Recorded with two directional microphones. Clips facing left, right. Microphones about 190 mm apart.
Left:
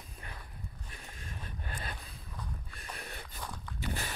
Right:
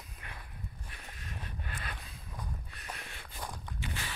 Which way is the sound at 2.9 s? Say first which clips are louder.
Left 4 dB; 40° left (ahead or behind).